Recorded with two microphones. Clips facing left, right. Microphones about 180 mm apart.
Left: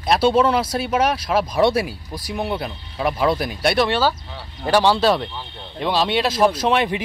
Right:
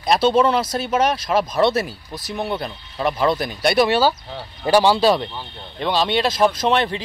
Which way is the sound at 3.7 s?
10° right (ahead or behind).